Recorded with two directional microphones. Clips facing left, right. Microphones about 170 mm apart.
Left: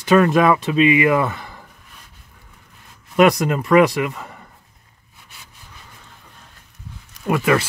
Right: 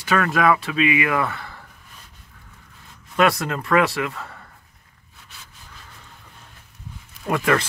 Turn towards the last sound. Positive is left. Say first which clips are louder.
# left 3 dB
turn(degrees=10)  # may be behind; listen again after turning